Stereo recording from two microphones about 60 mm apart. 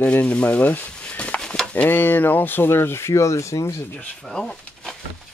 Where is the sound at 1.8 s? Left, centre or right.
Left.